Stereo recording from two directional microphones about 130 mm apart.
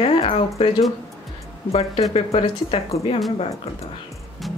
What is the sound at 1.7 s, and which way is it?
Speech, 50° left (ahead or behind).